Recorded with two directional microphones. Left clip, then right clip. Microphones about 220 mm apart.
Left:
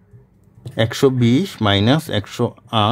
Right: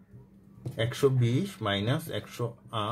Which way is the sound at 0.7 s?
45° left (ahead or behind).